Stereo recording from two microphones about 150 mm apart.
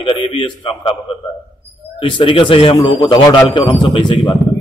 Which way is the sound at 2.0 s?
35° left (ahead or behind).